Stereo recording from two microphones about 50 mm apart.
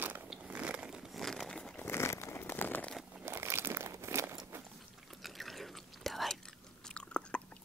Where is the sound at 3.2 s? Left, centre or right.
Right.